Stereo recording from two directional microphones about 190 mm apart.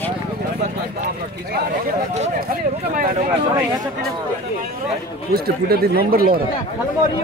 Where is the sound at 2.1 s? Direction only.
35° right (ahead or behind).